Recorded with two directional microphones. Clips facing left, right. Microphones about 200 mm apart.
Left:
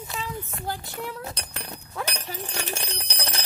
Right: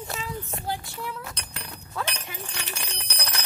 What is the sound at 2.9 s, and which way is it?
Bell, 30° left (ahead or behind).